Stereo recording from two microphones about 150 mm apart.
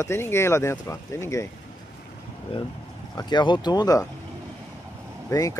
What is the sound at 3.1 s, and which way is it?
Speech, 30° left (ahead or behind).